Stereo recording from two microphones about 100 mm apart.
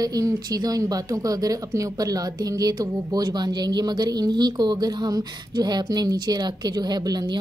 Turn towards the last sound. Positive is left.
turn(degrees=-45)  # may be behind; listen again after turning